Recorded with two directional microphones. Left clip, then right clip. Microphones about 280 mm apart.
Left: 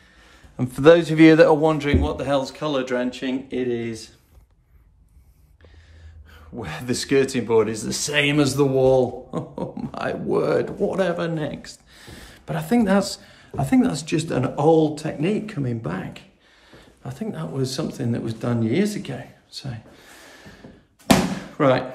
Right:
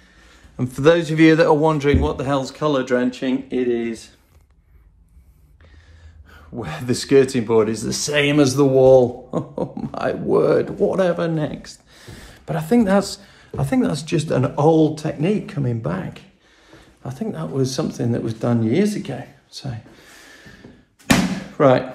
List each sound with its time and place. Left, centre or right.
0.2 s speech: centre
6.3 s speech: centre
20.0 s a sound: centre
21.5 s speech: centre